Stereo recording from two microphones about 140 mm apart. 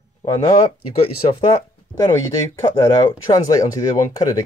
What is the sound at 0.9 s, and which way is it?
Speech, 40° left (ahead or behind).